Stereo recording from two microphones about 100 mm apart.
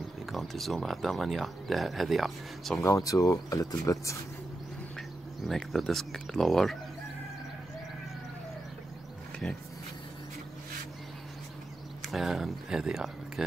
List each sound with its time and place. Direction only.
0.3 s speech: centre (ahead or behind)
2.8 s speech: 35° left (ahead or behind)
5.5 s speech: centre (ahead or behind)
12.1 s speech: 5° right (ahead or behind)